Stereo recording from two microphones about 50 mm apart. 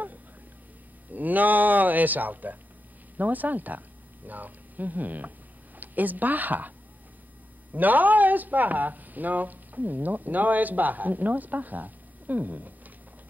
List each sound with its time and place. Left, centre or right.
1.1 s a sound: right
3.2 s speech: right
7.7 s speech: right